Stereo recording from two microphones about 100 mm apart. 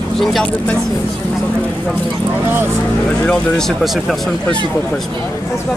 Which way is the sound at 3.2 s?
5° left (ahead or behind).